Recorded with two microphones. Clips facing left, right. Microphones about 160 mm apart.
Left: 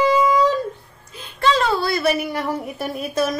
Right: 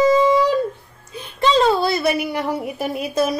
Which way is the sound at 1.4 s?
20° right (ahead or behind).